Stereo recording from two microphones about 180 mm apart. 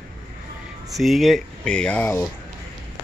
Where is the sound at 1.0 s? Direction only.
Centre (ahead or behind).